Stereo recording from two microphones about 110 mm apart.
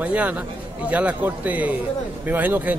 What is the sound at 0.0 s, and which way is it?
A man's voice, 15° right (ahead or behind).